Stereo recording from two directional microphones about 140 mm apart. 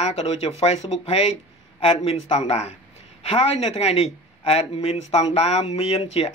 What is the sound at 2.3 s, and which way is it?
Speech, 50° left (ahead or behind).